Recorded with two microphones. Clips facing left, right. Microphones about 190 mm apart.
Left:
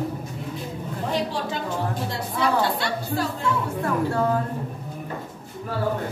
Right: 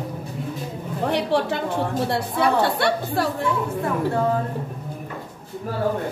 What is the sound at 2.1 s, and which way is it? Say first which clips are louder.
Chatter: right 1 dB; 65° right (ahead or behind).